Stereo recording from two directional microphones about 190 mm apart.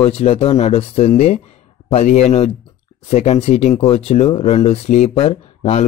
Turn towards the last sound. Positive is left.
turn(degrees=30)  # may be behind; listen again after turning